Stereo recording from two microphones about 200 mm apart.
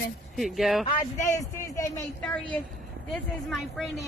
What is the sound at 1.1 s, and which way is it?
Speech, 40° left (ahead or behind).